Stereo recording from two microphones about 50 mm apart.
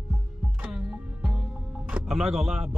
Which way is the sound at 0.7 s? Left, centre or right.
Centre.